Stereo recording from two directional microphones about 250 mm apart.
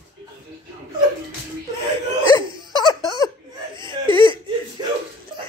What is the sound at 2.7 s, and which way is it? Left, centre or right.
Laughter, centre.